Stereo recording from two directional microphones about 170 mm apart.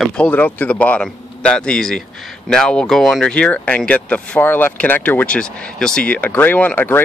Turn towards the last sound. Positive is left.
turn(degrees=10)  # may be behind; listen again after turning